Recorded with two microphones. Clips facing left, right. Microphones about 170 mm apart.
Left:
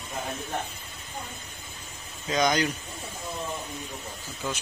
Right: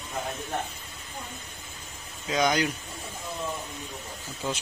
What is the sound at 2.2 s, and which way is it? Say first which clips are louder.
Speech: even; 10° right (ahead or behind).